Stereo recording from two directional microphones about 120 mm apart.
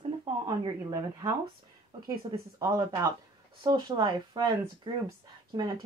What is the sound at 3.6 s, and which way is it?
Speech, 40° right (ahead or behind).